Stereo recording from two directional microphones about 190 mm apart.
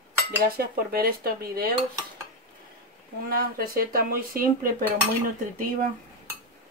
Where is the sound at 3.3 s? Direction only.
50° right (ahead or behind).